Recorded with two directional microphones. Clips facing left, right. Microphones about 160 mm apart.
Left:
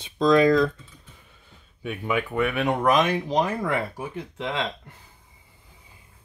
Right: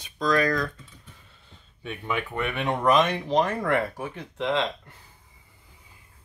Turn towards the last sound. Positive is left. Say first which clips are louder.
# right 3 dB
turn(degrees=5)  # may be behind; listen again after turning